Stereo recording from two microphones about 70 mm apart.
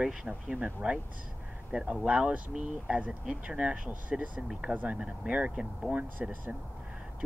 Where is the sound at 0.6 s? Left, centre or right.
Right.